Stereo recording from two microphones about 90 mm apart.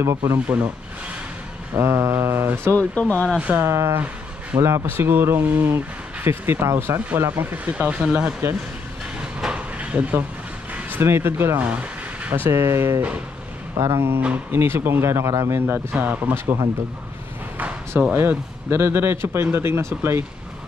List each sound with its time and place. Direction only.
0.0 s speech: 35° right (ahead or behind)
1.8 s speech: 30° right (ahead or behind)
2.7 s speech: 15° left (ahead or behind)
3.3 s speech: 15° right (ahead or behind)
3.6 s speech: 30° right (ahead or behind)
4.8 s speech: 25° right (ahead or behind)
9.2 s a sound: 10° right (ahead or behind)
10.7 s speech: 25° right (ahead or behind)
11.6 s a sound: 15° right (ahead or behind)
12.4 s speech: 30° right (ahead or behind)
14.0 s speech: 20° right (ahead or behind); by 15.6 s 35° right (ahead or behind)
15.6 s speech: 20° right (ahead or behind)
18.1 s speech: 25° right (ahead or behind)